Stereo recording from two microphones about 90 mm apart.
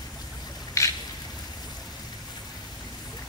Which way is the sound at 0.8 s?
35° left (ahead or behind).